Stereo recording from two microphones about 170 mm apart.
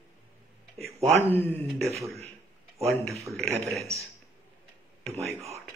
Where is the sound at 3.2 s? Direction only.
Centre (ahead or behind).